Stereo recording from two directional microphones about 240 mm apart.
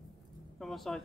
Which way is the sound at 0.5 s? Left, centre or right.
Centre.